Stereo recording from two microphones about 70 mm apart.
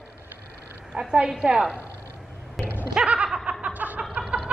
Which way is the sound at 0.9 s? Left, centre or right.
Centre.